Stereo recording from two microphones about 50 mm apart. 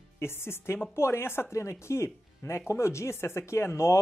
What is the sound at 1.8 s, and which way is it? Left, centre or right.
Speech, left.